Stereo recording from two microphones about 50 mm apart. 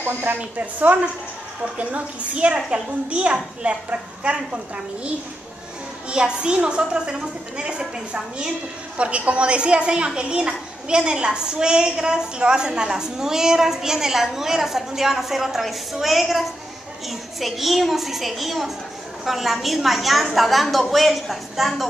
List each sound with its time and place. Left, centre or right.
0.0 s speech: right
0.6 s a woman's voice: right; by 21.8 s centre